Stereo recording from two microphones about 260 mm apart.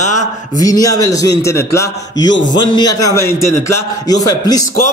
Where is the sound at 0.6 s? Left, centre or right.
Centre.